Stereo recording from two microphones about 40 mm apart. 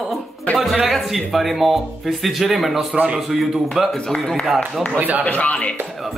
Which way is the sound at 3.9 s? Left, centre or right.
Centre.